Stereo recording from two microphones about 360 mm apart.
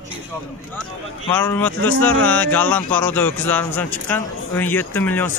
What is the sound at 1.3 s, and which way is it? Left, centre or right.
Speech, centre.